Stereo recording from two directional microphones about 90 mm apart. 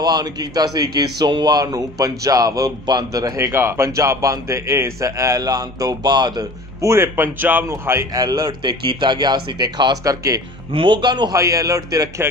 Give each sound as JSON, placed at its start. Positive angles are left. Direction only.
{"t": 0.0, "sound": "a man's voice", "side_deg": -50}
{"t": 3.3, "sound": "a man's voice", "side_deg": -30}
{"t": 6.8, "sound": "speech", "side_deg": -30}
{"t": 7.6, "sound": "a man's voice", "side_deg": -30}
{"t": 8.1, "sound": "speech", "side_deg": -45}
{"t": 10.0, "sound": "a man's voice", "side_deg": -40}
{"t": 10.7, "sound": "speech", "side_deg": -70}
{"t": 11.3, "sound": "a man's voice", "side_deg": -35}